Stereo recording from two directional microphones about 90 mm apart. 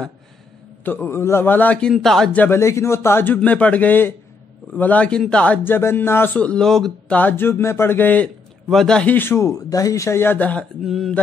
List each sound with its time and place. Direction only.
0.8 s speech: 25° left (ahead or behind)
1.9 s speech: centre (ahead or behind)
2.3 s speech: 20° left (ahead or behind)
2.6 s speech: 30° left (ahead or behind)
3.3 s a man's voice: 15° left (ahead or behind)
7.2 s speech: 20° left (ahead or behind)
8.6 s speech: 5° left (ahead or behind)
9.0 s speech: 20° left (ahead or behind)
10.8 s speech: centre (ahead or behind)